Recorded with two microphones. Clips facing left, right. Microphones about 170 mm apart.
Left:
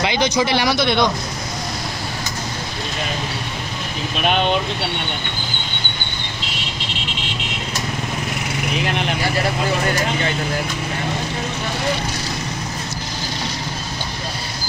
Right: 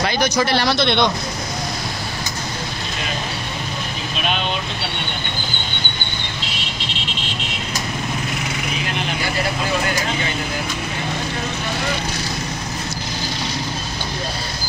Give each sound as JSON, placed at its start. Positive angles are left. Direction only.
{"t": 0.0, "sound": "speech", "side_deg": 15}
{"t": 4.2, "sound": "speech", "side_deg": 60}